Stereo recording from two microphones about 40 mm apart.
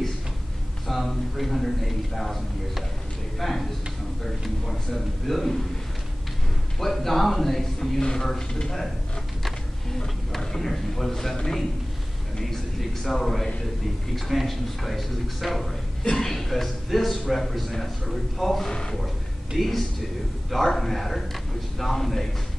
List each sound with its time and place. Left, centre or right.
0.8 s speech: centre
3.3 s speech: centre
6.8 s speech: centre
8.0 s speech: centre
10.3 s speech: centre
13.0 s speech: centre
18.7 s speech: centre
19.5 s speech: centre